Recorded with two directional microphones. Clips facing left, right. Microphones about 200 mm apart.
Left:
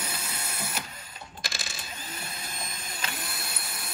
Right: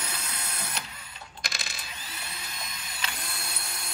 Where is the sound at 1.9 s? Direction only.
45° left (ahead or behind).